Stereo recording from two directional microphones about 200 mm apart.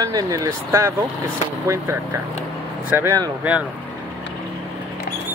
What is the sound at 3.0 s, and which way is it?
Speech, 15° right (ahead or behind).